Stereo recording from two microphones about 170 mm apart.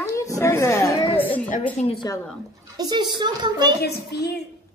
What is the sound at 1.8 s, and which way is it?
Speech, 40° left (ahead or behind).